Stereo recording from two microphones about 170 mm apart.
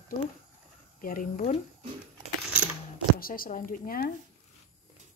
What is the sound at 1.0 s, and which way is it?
Speech, 55° left (ahead or behind).